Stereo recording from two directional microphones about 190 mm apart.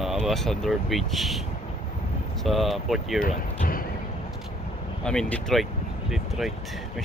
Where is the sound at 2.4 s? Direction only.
Centre (ahead or behind).